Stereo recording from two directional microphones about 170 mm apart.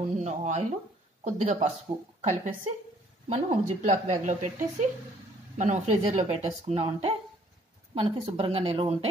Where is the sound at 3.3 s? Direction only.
40° right (ahead or behind).